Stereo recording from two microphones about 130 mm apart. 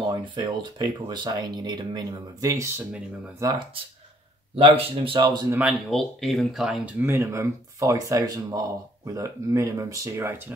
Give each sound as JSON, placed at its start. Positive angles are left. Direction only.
{"t": 0.0, "sound": "speech", "side_deg": -35}
{"t": 4.6, "sound": "speech", "side_deg": -45}
{"t": 5.6, "sound": "speech", "side_deg": -10}
{"t": 7.0, "sound": "speech", "side_deg": -20}